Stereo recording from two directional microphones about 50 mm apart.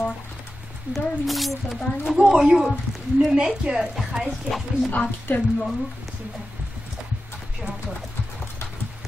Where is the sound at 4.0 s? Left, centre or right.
Centre.